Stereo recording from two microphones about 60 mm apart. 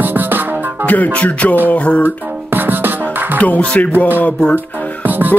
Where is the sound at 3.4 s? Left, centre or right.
Left.